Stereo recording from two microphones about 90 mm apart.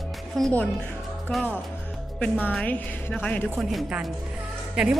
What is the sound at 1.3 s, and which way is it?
Speech, 20° left (ahead or behind).